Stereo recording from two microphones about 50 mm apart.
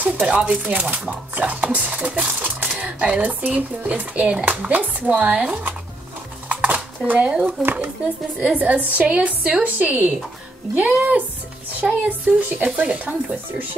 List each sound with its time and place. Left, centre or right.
0.0 s a sound: right
0.7 s a woman's voice: right
6.5 s dishes: right
7.6 s a woman's voice: right